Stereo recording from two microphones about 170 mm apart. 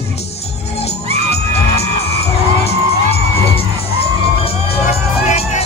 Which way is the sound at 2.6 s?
35° left (ahead or behind).